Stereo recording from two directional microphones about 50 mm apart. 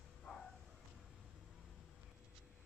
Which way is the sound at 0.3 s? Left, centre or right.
Centre.